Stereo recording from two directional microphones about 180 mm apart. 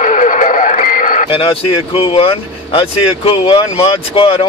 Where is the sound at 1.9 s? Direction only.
30° left (ahead or behind).